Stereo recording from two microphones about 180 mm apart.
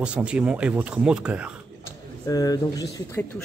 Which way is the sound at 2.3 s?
20° left (ahead or behind).